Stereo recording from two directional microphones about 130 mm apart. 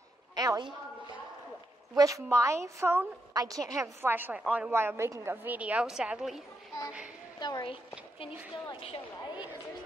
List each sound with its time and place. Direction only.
0.3 s a woman's voice: 30° right (ahead or behind)
2.0 s a woman's voice: 25° right (ahead or behind); by 6.4 s 5° right (ahead or behind)
7.3 s a woman's voice: 35° left (ahead or behind)